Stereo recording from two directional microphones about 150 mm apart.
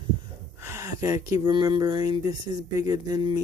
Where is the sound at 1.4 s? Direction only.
30° right (ahead or behind).